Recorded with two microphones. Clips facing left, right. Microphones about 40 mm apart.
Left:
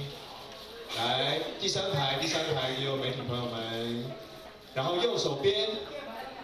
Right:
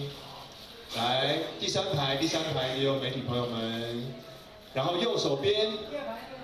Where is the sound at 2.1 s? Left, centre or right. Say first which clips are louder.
Right 2 dB; left.